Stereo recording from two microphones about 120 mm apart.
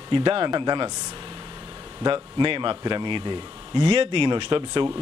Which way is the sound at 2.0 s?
45° right (ahead or behind).